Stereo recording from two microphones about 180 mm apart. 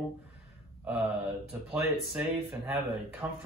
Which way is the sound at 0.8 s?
10° right (ahead or behind).